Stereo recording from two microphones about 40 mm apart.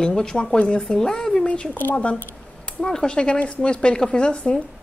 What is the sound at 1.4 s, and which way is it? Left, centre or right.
Speech, left.